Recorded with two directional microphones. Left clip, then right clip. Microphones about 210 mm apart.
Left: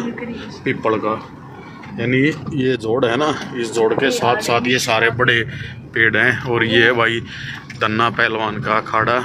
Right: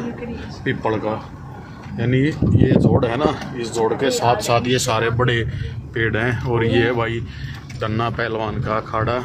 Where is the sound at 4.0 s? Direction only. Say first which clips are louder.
Left 1 dB; 10° right (ahead or behind).